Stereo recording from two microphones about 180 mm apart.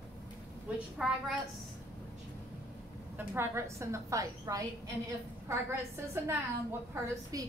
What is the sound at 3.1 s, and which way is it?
A woman's voice, 10° right (ahead or behind).